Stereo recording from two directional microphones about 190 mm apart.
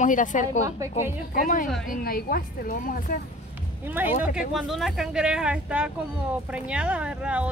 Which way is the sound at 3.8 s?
10° right (ahead or behind).